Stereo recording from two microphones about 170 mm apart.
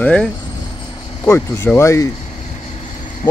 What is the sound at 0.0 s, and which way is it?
Speech, 5° left (ahead or behind).